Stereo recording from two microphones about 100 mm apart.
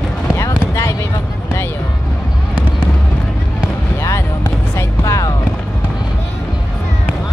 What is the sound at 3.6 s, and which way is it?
Basketball bounce, 30° left (ahead or behind).